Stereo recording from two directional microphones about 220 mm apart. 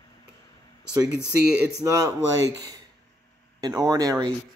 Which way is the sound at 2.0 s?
15° right (ahead or behind).